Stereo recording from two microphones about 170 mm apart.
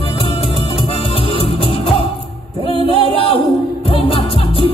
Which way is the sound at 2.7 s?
30° left (ahead or behind).